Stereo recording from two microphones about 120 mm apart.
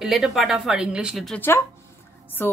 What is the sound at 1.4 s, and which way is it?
Speech, 20° left (ahead or behind).